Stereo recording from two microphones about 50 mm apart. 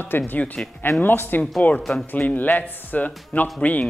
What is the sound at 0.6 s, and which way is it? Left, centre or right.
Speech, left.